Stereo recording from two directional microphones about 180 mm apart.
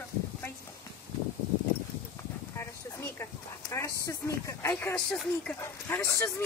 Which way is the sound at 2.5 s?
15° left (ahead or behind).